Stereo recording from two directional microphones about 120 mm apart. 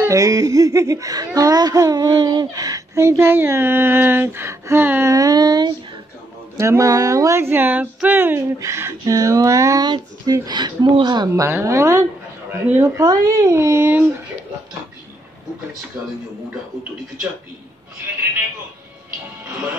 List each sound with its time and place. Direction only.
0.0 s speech: 25° right (ahead or behind)
5.1 s a sound: 30° right (ahead or behind)
6.5 s speech: 25° right (ahead or behind)
11.4 s speech: 25° right (ahead or behind)